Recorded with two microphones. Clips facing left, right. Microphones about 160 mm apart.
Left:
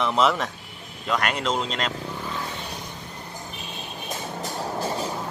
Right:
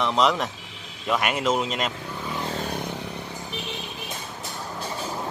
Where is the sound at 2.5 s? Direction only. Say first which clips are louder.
Right 6 dB; 45° right (ahead or behind).